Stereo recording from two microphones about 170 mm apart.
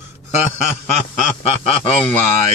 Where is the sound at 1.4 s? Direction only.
40° left (ahead or behind).